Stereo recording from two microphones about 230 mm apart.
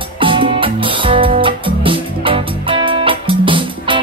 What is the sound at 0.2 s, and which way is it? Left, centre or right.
Music, right.